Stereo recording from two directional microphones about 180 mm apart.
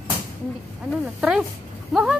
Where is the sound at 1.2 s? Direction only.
5° right (ahead or behind).